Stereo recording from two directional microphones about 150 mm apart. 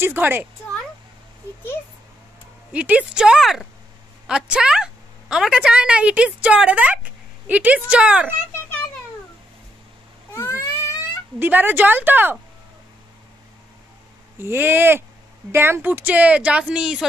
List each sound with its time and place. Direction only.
0.0 s a woman's voice: 15° right (ahead or behind)
2.7 s a woman's voice: 10° right (ahead or behind)
10.3 s a sound: 20° left (ahead or behind)
11.3 s a woman's voice: 15° right (ahead or behind)
14.4 s a woman's voice: 15° right (ahead or behind)